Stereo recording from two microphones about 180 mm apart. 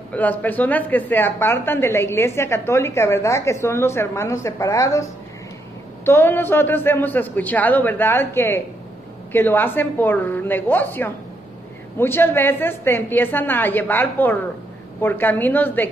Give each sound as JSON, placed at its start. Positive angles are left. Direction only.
{"t": 0.1, "sound": "a woman's voice", "side_deg": 10}